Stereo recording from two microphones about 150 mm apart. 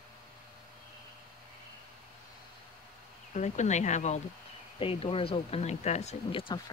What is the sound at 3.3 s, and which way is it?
Speech, 50° left (ahead or behind).